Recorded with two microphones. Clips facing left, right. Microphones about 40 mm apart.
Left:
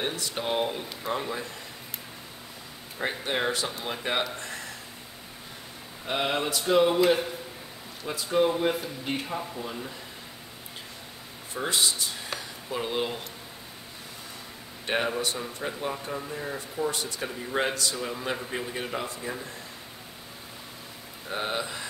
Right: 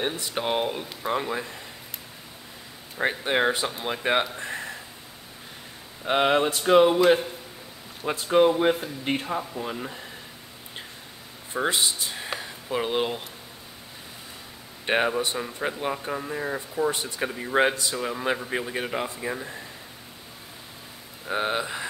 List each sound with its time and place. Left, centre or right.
0.0 s speech: centre
3.0 s speech: right
4.4 s a sound: right
6.0 s a sound: right
8.0 s a sound: right
9.6 s speech: right
11.5 s speech: right
14.9 s speech: right
21.3 s speech: centre